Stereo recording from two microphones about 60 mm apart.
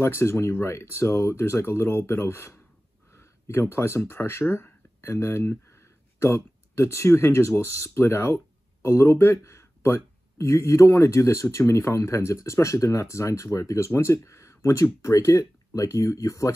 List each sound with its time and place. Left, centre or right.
0.0 s speech: left